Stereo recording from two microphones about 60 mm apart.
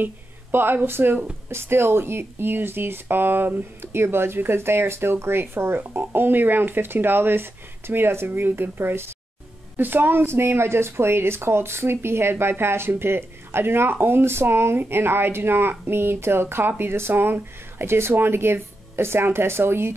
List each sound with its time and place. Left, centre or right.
0.0 s a woman's voice: right